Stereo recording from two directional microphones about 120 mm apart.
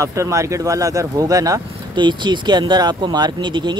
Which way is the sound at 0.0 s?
25° right (ahead or behind).